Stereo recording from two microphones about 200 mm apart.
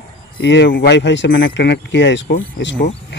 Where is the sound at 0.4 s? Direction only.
60° left (ahead or behind).